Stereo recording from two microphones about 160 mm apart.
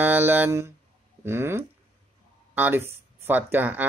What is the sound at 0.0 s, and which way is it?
Speech, 10° right (ahead or behind).